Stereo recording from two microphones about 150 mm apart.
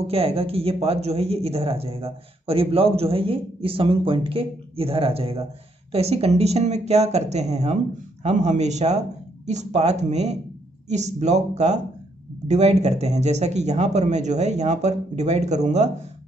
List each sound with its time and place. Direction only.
0.0 s a man's voice: 40° right (ahead or behind)